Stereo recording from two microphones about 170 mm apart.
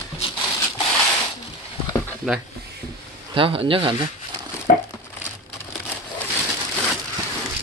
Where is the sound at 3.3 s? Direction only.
30° right (ahead or behind).